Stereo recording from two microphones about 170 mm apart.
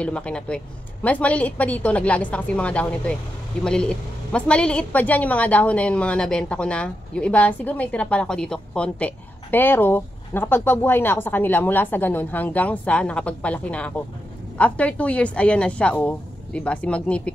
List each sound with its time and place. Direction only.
0.0 s a woman's voice: 5° left (ahead or behind)